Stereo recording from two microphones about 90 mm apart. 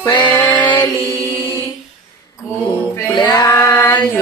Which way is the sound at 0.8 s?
30° left (ahead or behind).